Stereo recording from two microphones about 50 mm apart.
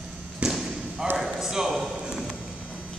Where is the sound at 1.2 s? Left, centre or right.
Centre.